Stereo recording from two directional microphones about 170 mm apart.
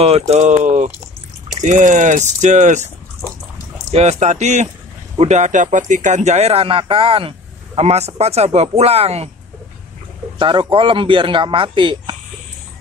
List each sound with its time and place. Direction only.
0.0 s speech: 40° right (ahead or behind)
3.9 s speech: 40° right (ahead or behind)
10.4 s speech: 30° right (ahead or behind)